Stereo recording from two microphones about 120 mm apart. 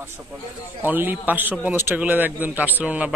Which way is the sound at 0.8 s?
15° right (ahead or behind).